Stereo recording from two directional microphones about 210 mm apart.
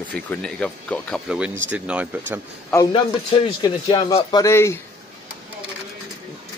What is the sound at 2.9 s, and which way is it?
Speech, 25° left (ahead or behind).